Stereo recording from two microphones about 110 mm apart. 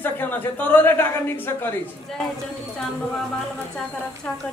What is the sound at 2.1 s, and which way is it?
Speech, 5° left (ahead or behind).